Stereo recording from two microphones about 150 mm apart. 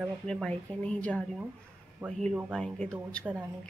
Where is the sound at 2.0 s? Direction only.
20° right (ahead or behind).